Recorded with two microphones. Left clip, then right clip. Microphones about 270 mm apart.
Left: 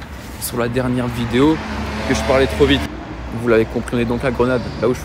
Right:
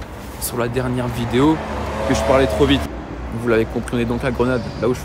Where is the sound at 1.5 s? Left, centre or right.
Right.